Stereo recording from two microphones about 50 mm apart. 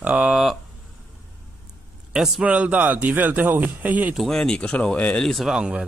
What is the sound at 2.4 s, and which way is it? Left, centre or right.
Speech, right.